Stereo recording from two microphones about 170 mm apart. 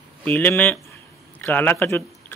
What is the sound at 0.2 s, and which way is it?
Speech, 10° left (ahead or behind).